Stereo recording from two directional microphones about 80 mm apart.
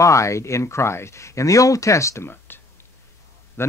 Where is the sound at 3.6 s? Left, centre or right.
Left.